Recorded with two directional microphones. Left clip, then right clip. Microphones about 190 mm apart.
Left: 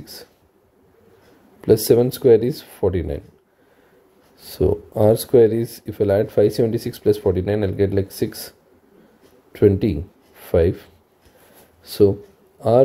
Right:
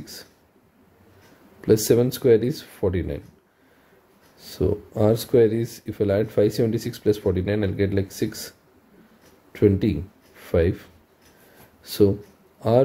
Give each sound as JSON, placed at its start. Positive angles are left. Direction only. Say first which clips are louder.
{"t": 0.0, "sound": "speech", "louder": "left 2 dB", "side_deg": 15}
{"t": 1.6, "sound": "speech", "louder": "left 4 dB", "side_deg": 15}
{"t": 4.4, "sound": "speech", "louder": "left 5 dB", "side_deg": 15}
{"t": 11.8, "sound": "a sound", "louder": "left 4 dB", "side_deg": 10}